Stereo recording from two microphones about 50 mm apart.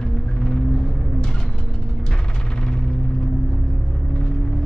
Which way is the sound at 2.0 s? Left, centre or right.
Centre.